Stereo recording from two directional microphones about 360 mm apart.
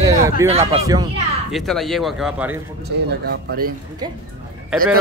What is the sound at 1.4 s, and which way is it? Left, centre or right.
Speech, centre.